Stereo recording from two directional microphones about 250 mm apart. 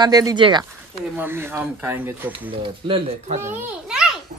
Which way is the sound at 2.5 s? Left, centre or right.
Right.